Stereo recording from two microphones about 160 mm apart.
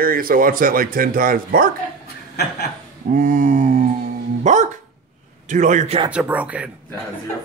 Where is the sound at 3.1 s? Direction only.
55° right (ahead or behind).